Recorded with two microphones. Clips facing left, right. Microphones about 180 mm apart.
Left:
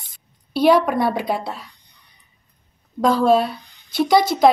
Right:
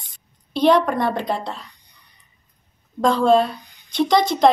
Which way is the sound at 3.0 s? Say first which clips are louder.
Even; 5° left (ahead or behind).